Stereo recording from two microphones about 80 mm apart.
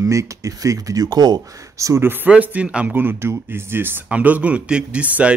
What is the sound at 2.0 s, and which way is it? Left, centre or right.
Speech, right.